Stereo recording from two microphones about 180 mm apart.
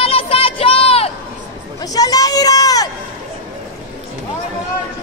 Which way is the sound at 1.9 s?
20° left (ahead or behind).